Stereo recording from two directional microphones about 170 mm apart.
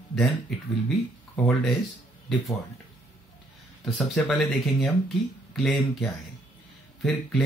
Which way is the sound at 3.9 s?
Centre (ahead or behind).